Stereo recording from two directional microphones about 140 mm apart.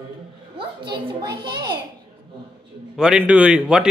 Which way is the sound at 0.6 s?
35° right (ahead or behind).